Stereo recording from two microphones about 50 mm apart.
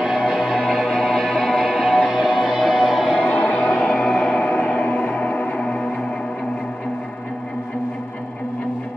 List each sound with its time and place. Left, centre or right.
0.0 s music: centre
2.1 s music: centre
3.2 s music: centre